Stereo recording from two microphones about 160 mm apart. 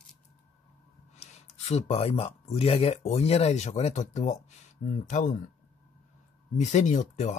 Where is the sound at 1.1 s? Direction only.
45° left (ahead or behind).